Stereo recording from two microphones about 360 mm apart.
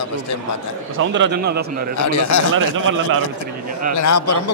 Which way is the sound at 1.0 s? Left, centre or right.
Right.